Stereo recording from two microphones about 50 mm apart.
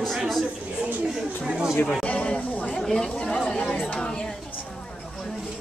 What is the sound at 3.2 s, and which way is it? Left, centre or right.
Speech, centre.